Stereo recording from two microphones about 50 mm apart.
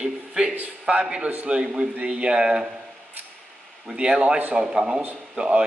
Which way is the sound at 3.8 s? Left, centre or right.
Centre.